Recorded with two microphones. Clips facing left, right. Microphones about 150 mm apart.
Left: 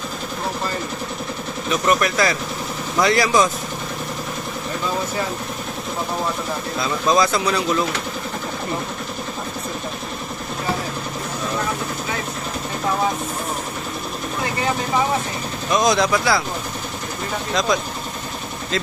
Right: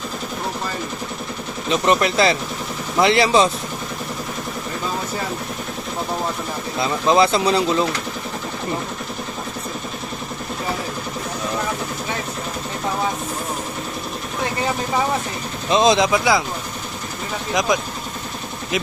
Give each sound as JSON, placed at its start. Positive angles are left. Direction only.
{"t": 1.7, "sound": "speech", "side_deg": -25}
{"t": 6.8, "sound": "speech", "side_deg": -25}
{"t": 15.7, "sound": "speech", "side_deg": -25}